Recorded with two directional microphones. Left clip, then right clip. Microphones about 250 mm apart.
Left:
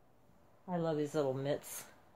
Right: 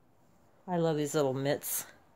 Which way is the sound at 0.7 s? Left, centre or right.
Right.